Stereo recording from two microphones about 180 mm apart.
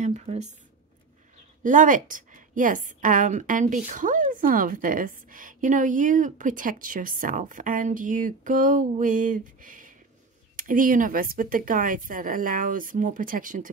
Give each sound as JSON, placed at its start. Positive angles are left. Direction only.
{"t": 0.0, "sound": "speech", "side_deg": -40}
{"t": 1.6, "sound": "a woman's voice", "side_deg": -45}